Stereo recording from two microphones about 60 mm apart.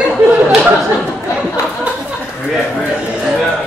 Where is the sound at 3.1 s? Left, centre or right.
Centre.